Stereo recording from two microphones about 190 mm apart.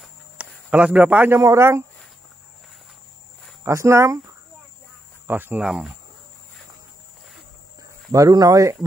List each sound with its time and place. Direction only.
0.0 s speech: 5° right (ahead or behind)
3.6 s speech: 15° right (ahead or behind)
8.1 s speech: 20° right (ahead or behind)